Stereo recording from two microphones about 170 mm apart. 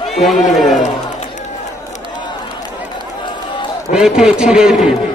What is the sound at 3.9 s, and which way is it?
A man's voice, 5° right (ahead or behind).